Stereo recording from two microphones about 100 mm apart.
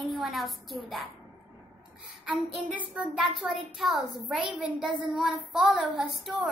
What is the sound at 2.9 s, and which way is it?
Speech, 10° right (ahead or behind).